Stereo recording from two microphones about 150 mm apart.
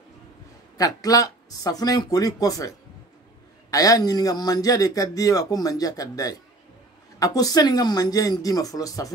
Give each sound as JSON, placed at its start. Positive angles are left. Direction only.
{"t": 0.7, "sound": "a man's voice", "side_deg": 25}
{"t": 3.7, "sound": "a man's voice", "side_deg": 25}